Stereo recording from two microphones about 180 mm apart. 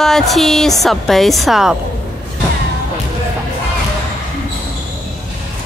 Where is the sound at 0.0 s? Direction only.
Centre (ahead or behind).